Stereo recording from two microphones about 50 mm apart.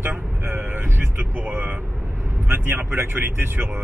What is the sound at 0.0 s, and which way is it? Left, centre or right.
Vehicle, right.